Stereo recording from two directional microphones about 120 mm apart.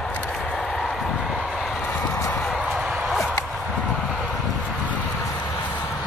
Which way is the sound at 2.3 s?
5° left (ahead or behind).